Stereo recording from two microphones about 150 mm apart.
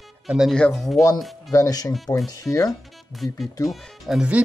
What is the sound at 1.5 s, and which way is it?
Speech, 20° left (ahead or behind).